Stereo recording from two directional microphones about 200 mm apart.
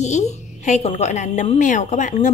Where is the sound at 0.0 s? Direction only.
35° left (ahead or behind).